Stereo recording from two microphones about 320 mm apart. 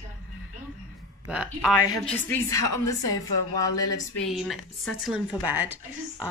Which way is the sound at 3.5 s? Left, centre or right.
Centre.